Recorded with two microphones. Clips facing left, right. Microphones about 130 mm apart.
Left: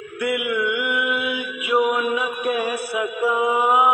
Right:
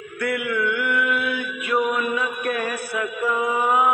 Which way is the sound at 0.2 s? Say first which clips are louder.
Left 1 dB; 15° left (ahead or behind).